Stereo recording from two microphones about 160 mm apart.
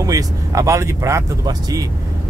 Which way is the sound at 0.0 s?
20° right (ahead or behind).